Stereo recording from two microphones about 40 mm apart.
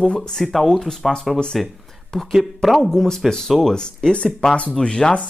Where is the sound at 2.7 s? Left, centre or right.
Centre.